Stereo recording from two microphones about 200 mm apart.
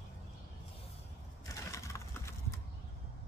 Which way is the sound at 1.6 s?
15° left (ahead or behind).